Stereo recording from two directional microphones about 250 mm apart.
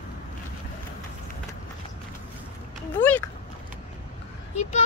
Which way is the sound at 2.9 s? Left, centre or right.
Centre.